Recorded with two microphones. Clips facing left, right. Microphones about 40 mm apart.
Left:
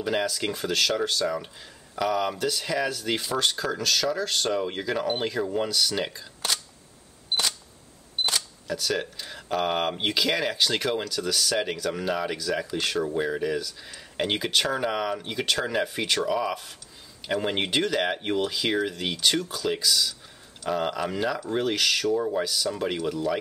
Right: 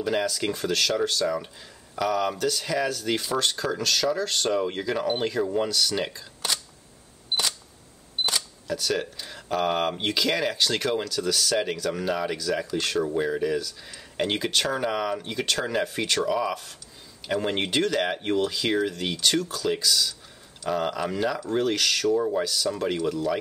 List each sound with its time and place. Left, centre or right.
0.0 s speech: centre
8.3 s speech: centre